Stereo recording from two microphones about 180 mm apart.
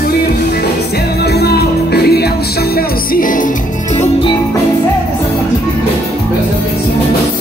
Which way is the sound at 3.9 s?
35° left (ahead or behind).